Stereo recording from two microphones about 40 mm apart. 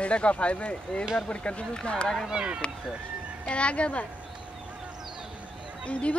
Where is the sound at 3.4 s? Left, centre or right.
Left.